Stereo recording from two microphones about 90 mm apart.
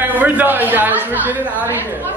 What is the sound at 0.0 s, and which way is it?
A man's voice, 20° right (ahead or behind).